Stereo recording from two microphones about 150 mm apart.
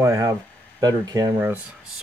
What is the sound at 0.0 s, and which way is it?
Speech, 20° right (ahead or behind).